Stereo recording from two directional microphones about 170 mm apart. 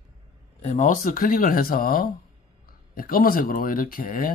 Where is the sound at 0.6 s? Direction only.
40° left (ahead or behind).